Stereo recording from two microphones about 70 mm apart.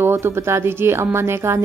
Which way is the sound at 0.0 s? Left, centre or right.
Right.